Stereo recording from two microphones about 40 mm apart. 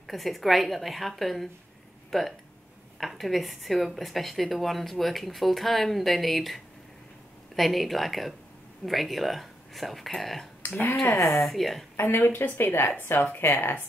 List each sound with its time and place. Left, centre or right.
0.1 s speech: centre
12.0 s a woman's voice: left
12.9 s speech: left
13.3 s a woman's voice: left